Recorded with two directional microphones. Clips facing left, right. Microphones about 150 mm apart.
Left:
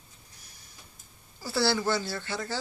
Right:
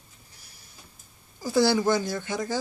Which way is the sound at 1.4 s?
15° right (ahead or behind).